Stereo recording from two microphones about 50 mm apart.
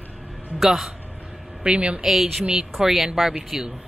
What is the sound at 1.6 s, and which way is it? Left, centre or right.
Speech, right.